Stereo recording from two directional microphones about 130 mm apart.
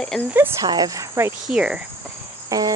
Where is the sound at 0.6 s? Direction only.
30° right (ahead or behind).